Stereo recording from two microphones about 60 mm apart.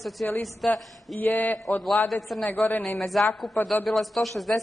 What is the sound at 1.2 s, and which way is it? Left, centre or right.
Speech, left.